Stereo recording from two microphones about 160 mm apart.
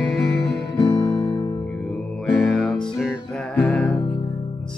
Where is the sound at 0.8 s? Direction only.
25° left (ahead or behind).